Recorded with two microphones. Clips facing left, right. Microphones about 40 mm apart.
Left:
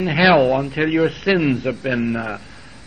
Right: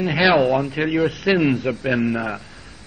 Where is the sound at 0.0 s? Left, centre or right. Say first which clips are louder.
Left 2 dB; centre.